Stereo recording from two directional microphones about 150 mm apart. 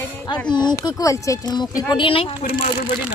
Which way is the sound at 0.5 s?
30° left (ahead or behind).